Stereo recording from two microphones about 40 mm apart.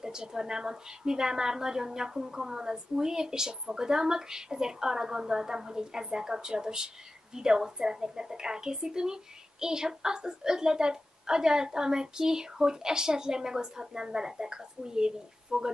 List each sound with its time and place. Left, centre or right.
0.0 s a woman's voice: centre